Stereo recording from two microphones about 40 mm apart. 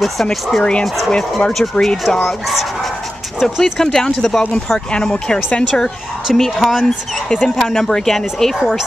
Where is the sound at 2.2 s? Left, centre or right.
Centre.